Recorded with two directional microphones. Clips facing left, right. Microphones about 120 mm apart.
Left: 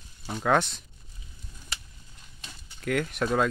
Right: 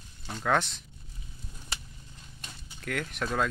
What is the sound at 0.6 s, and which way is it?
Speech, centre (ahead or behind).